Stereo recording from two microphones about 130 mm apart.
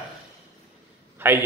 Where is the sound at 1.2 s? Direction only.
15° right (ahead or behind).